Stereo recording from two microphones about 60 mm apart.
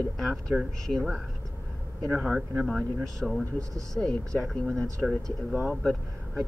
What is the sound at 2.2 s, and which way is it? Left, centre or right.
Speech, centre.